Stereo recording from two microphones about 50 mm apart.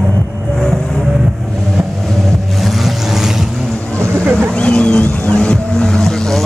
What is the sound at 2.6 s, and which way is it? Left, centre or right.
Vehicle, centre.